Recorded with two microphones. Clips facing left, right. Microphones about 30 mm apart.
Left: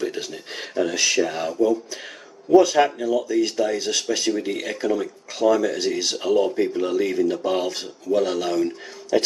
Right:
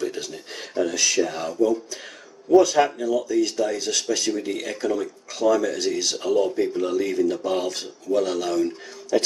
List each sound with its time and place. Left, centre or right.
0.0 s speech: centre